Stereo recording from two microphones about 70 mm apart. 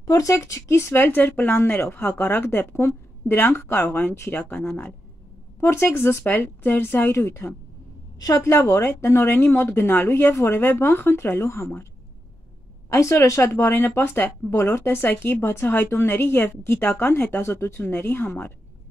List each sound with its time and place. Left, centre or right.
0.0 s speech: left
5.6 s speech: left
7.2 s a woman's voice: left
12.9 s speech: left
14.5 s speech: left